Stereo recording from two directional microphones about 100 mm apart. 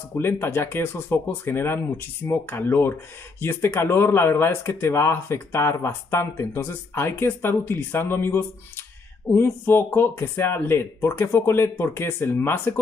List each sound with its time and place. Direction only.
0.1 s speech: 25° left (ahead or behind)